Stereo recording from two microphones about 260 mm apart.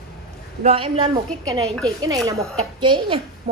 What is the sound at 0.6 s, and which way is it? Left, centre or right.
A woman's voice, right.